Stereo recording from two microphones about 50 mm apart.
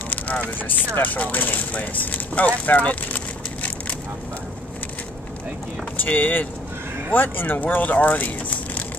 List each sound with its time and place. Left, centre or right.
0.1 s speech: left
5.9 s speech: left